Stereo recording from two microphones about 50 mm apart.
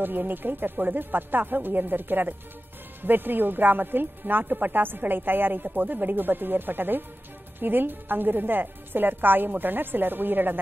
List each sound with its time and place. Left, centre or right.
0.0 s speech: right